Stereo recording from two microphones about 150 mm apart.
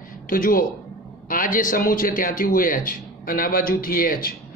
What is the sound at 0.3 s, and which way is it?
A man's voice, 70° left (ahead or behind).